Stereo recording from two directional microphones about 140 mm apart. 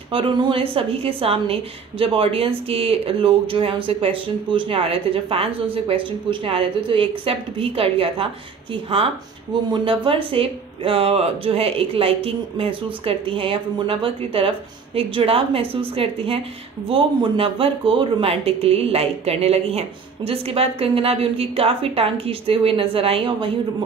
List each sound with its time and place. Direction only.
0.1 s a woman's voice: 40° right (ahead or behind)
9.7 s a woman's voice: 40° right (ahead or behind)